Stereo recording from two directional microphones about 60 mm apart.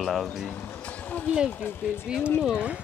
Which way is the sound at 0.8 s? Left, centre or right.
Left.